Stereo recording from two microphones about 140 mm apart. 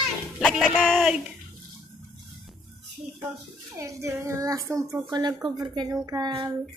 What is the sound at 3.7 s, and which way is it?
Speech, 20° right (ahead or behind).